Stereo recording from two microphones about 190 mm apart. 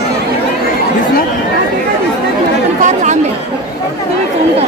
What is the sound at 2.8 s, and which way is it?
Speech, 40° right (ahead or behind).